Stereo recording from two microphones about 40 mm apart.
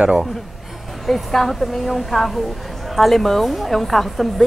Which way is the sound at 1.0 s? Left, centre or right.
Centre.